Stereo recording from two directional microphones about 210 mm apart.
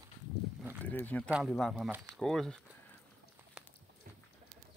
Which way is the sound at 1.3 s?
5° right (ahead or behind).